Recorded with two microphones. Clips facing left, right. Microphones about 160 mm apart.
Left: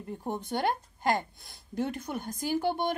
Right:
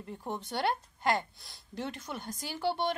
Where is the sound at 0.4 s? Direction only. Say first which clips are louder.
Left 1 dB; 50° left (ahead or behind).